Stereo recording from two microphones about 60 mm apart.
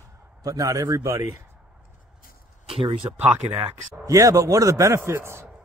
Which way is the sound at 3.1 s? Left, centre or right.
Right.